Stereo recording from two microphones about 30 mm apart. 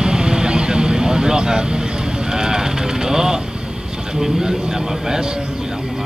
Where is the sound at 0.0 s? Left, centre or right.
Right.